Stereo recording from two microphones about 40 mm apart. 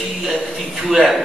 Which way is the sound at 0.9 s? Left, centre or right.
Centre.